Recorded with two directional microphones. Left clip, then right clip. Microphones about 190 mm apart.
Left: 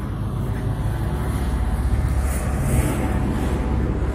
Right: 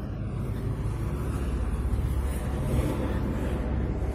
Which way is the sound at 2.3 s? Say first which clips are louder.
Left 6 dB; 45° left (ahead or behind).